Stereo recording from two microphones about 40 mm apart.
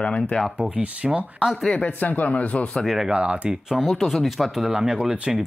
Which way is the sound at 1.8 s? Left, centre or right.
Left.